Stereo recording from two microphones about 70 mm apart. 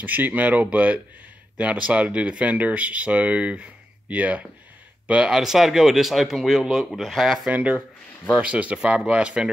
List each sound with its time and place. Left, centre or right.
0.0 s a man's voice: right; by 7.4 s centre
8.4 s speech: centre